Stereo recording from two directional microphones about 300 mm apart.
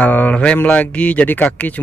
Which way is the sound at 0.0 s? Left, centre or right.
Centre.